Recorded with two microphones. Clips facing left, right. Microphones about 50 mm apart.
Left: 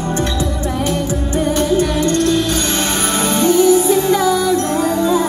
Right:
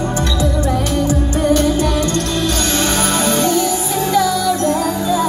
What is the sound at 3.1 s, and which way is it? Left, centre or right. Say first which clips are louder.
Music: left 5 dB; left.